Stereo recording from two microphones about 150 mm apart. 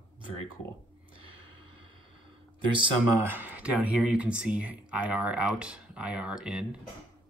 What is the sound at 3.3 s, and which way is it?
Speech, 10° right (ahead or behind).